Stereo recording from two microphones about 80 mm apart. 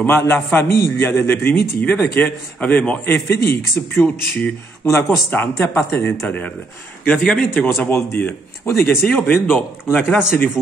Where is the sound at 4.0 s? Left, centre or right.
Left.